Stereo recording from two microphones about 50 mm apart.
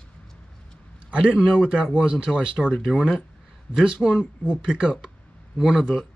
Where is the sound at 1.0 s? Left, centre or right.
Right.